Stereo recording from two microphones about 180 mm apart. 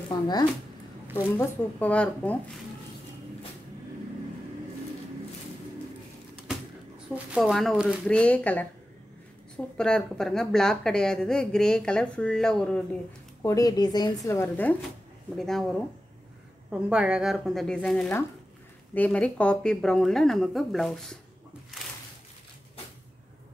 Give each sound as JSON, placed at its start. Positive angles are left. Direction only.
{"t": 0.1, "sound": "speech", "side_deg": 25}
{"t": 1.3, "sound": "speech", "side_deg": 10}
{"t": 6.3, "sound": "a sound", "side_deg": 0}
{"t": 7.3, "sound": "speech", "side_deg": 0}
{"t": 9.8, "sound": "speech", "side_deg": 5}
{"t": 13.4, "sound": "speech", "side_deg": 20}
{"t": 16.9, "sound": "speech", "side_deg": -5}